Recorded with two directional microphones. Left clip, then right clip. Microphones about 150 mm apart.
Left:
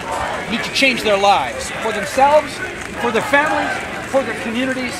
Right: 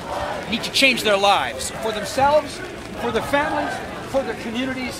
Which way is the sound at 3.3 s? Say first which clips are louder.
Left 6 dB; 45° left (ahead or behind).